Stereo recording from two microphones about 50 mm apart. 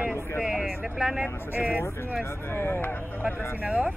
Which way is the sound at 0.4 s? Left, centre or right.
Centre.